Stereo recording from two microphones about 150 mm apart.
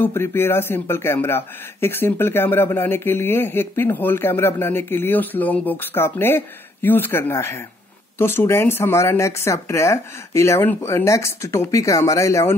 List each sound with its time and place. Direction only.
0.0 s speech: 15° left (ahead or behind)